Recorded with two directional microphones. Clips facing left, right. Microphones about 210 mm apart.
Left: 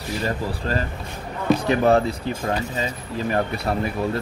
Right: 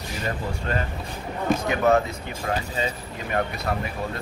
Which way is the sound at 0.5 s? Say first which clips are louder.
Left 2 dB; 35° left (ahead or behind).